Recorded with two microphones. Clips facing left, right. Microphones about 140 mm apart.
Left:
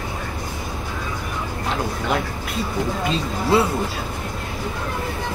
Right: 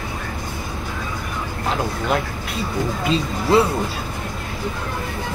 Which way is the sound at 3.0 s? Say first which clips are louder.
Right 2 dB; centre (ahead or behind).